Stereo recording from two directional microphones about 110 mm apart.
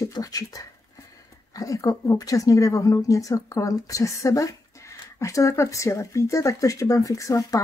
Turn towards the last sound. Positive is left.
turn(degrees=30)  # may be behind; listen again after turning